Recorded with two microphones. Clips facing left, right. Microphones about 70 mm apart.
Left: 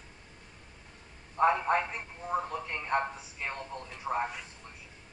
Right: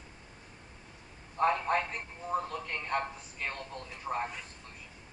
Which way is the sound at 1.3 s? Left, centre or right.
Centre.